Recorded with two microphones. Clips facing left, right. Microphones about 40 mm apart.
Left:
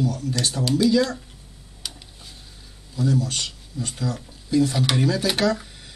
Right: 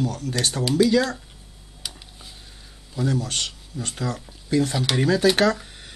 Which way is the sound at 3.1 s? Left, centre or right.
Right.